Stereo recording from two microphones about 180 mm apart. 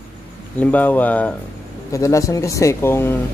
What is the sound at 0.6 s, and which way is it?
Speech, 10° left (ahead or behind).